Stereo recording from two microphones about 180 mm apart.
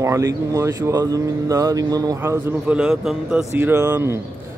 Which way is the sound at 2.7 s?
5° right (ahead or behind).